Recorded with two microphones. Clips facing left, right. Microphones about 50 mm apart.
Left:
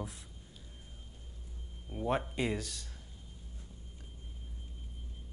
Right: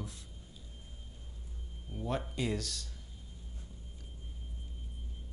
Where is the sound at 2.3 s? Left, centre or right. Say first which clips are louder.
Left 1 dB; centre.